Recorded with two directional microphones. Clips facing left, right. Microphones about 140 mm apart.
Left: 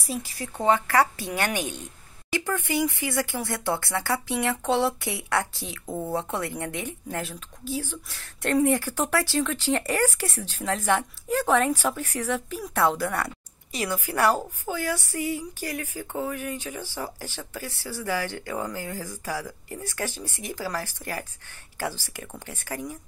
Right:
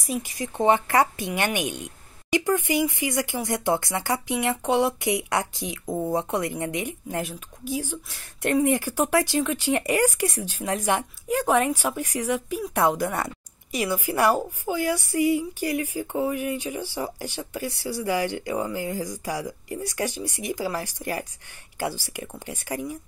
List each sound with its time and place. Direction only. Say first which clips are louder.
0.1 s a woman's voice: right 3 dB; 15° right (ahead or behind)